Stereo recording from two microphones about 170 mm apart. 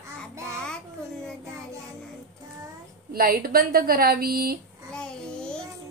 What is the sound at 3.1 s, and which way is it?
A woman's voice, 60° right (ahead or behind).